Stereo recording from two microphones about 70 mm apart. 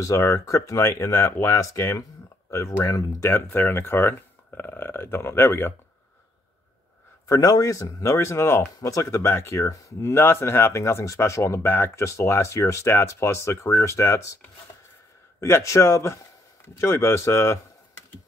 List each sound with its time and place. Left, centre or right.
0.0 s speech: left
3.3 s speech: left
7.2 s speech: left
15.4 s speech: left